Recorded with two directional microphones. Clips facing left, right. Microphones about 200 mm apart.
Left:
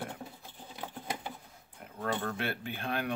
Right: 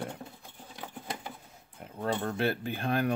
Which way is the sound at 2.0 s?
25° right (ahead or behind).